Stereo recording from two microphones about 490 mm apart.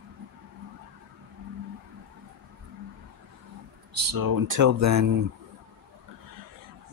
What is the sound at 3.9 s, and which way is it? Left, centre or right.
Speech, right.